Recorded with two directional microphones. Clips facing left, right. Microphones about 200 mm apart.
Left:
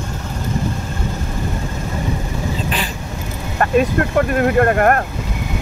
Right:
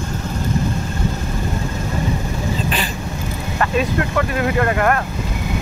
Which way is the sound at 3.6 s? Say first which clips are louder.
Left 4 dB; 50° left (ahead or behind).